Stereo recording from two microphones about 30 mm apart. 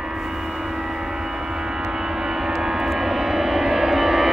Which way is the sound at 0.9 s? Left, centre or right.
Centre.